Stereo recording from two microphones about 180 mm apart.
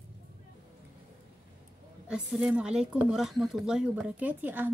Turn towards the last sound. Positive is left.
turn(degrees=-10)  # may be behind; listen again after turning